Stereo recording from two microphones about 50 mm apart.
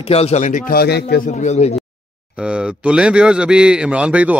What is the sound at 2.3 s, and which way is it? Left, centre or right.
Speech, right.